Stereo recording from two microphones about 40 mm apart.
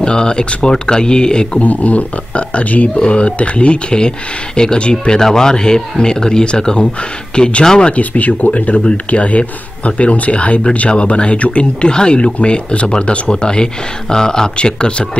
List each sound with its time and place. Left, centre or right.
0.0 s speech: left
1.6 s speech: left
3.0 s speech: left
5.2 s speech: centre
7.9 s speech: left